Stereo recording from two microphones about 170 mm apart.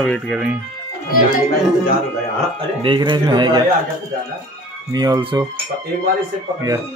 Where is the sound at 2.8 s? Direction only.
25° right (ahead or behind).